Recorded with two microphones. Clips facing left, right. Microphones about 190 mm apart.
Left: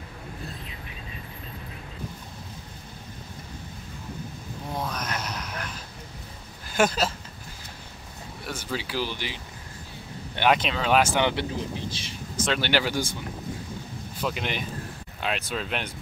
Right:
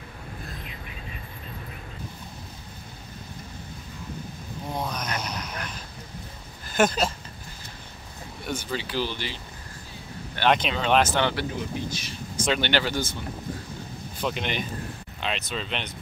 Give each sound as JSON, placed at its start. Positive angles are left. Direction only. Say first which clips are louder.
{"t": 4.7, "sound": "a sound", "louder": "even", "side_deg": 0}
{"t": 6.7, "sound": "a sound", "louder": "right 1 dB", "side_deg": 10}
{"t": 8.5, "sound": "speech", "louder": "right 2 dB", "side_deg": 5}
{"t": 10.4, "sound": "speech", "louder": "even", "side_deg": 5}
{"t": 11.9, "sound": "speech", "louder": "even", "side_deg": 30}
{"t": 12.4, "sound": "speech", "louder": "even", "side_deg": 0}
{"t": 14.2, "sound": "speech", "louder": "right 1 dB", "side_deg": 5}